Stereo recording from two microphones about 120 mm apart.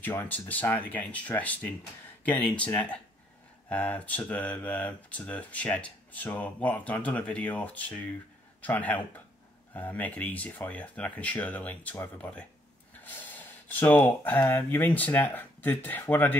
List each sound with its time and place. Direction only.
0.0 s speech: 15° left (ahead or behind)
13.7 s speech: 15° left (ahead or behind)